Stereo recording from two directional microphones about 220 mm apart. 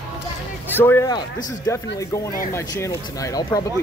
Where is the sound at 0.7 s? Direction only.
10° left (ahead or behind).